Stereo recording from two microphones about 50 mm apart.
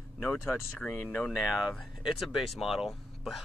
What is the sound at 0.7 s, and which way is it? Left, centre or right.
Speech, left.